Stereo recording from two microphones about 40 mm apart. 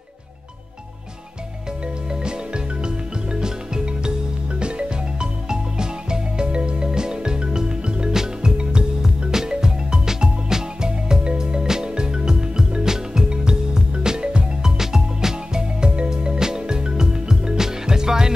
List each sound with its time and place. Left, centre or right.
2.0 s music: right
14.8 s music: centre